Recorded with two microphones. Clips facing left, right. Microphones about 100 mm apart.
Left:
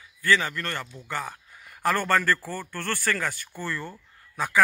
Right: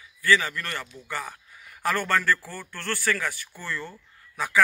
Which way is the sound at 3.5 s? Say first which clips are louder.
Left 2 dB; 15° left (ahead or behind).